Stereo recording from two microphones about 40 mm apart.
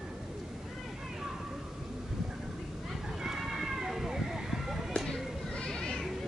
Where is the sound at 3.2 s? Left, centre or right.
Centre.